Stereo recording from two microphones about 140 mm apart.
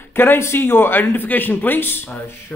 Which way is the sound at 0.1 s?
15° left (ahead or behind).